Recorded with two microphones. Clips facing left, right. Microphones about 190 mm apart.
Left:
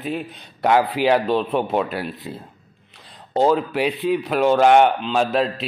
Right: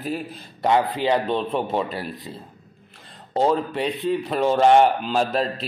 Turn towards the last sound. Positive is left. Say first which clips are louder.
# left 2 dB
turn(degrees=0)  # may be behind; listen again after turning